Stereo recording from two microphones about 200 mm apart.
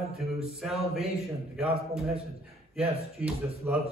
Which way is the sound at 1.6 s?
30° right (ahead or behind).